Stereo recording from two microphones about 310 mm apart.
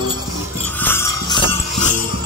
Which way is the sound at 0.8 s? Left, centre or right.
Centre.